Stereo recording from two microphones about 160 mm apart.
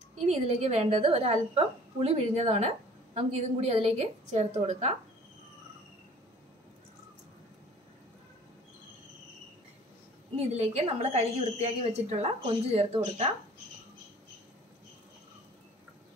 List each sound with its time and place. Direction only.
0.3 s a woman's voice: 40° right (ahead or behind)
10.3 s a woman's voice: 40° right (ahead or behind)